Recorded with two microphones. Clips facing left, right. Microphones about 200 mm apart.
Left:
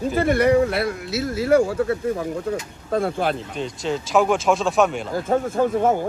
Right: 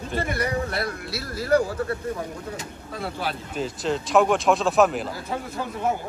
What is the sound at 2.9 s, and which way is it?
Speech, 50° left (ahead or behind).